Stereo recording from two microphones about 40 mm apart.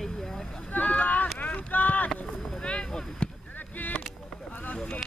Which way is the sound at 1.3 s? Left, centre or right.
Left.